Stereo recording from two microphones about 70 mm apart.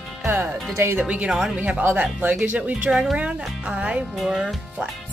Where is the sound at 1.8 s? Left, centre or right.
Right.